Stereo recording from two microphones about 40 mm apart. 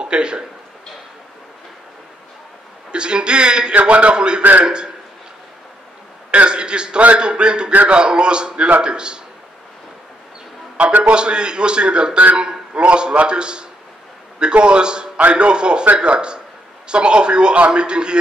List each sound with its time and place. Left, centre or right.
0.0 s speech: right
2.9 s a man's voice: right
3.7 s a man's voice: right
4.4 s a man's voice: right
4.6 s a man's voice: right
6.3 s a man's voice: right
10.8 s a man's voice: right
11.1 s a man's voice: right